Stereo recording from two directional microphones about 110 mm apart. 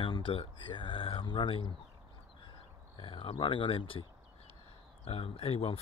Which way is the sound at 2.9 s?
50° left (ahead or behind).